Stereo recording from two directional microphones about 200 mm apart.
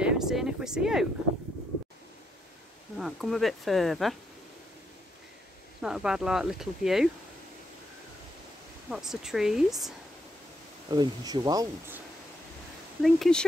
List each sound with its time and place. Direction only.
0.0 s speech: 5° right (ahead or behind)
3.0 s speech: centre (ahead or behind)
5.8 s speech: 5° right (ahead or behind)
8.9 s speech: centre (ahead or behind)
10.9 s speech: 20° right (ahead or behind)
13.0 s speech: centre (ahead or behind)